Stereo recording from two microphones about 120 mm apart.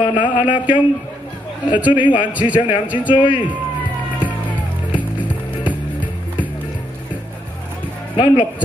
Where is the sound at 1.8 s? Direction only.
15° right (ahead or behind).